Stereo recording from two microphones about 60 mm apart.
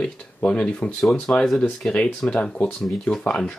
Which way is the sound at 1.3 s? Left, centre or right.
Centre.